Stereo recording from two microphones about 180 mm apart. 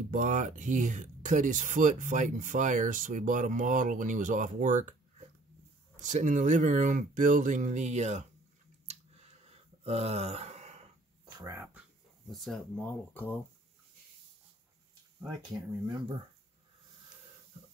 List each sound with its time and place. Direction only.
0.1 s speech: 45° right (ahead or behind)
8.8 s a sound: 35° right (ahead or behind)
11.3 s speech: 20° right (ahead or behind)
12.3 s speech: centre (ahead or behind)